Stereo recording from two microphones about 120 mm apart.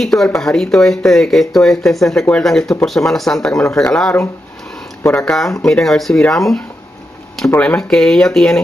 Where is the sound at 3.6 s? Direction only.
20° left (ahead or behind).